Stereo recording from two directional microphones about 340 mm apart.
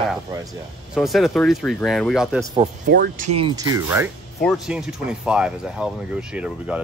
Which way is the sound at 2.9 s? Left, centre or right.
Right.